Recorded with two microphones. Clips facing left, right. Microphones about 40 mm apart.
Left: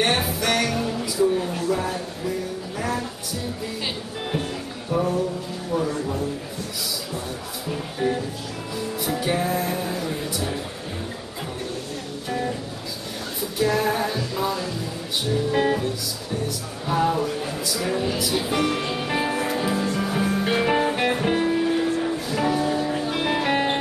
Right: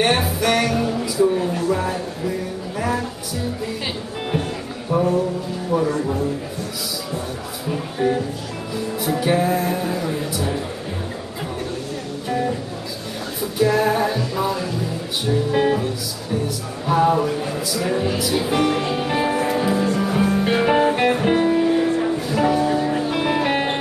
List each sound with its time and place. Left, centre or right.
0.0 s music: centre
4.9 s music: centre
5.9 s a sound: centre
7.7 s music: centre
12.3 s music: centre
13.6 s music: centre